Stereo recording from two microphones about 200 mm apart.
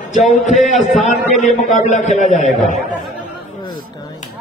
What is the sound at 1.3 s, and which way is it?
A man's voice, 35° left (ahead or behind).